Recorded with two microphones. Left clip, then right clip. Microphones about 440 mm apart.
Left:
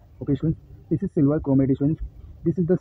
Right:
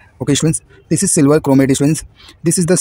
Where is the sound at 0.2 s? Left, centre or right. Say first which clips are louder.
Right 10 dB; left.